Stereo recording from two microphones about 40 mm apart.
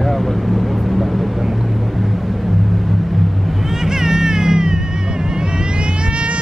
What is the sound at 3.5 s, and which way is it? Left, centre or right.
Music, centre.